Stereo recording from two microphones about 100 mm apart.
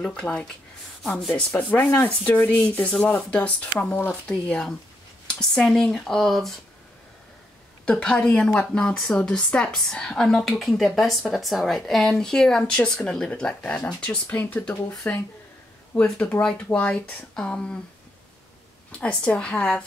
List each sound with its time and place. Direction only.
0.0 s a woman's voice: 5° left (ahead or behind)
7.8 s a woman's voice: 10° left (ahead or behind)
14.2 s speech: 20° left (ahead or behind)
18.9 s speech: 10° left (ahead or behind)